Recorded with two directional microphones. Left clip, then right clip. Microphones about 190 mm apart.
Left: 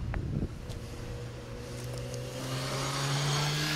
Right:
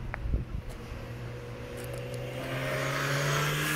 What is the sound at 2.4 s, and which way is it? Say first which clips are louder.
Vehicle: right 3 dB; 70° left (ahead or behind).